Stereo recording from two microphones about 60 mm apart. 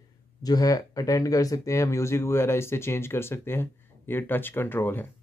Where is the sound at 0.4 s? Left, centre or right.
Left.